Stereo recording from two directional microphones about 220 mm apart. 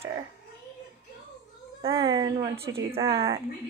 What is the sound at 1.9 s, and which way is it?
Dishes, 15° right (ahead or behind).